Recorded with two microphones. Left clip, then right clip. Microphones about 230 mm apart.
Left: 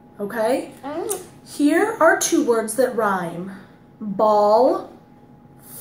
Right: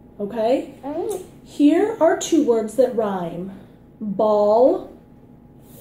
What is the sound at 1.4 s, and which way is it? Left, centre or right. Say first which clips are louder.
A woman's voice: right 1 dB; left.